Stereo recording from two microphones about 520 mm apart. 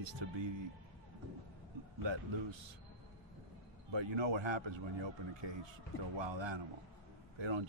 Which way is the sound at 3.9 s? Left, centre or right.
Right.